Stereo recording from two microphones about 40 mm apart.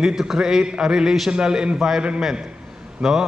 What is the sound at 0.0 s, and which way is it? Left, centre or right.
A man's voice, centre.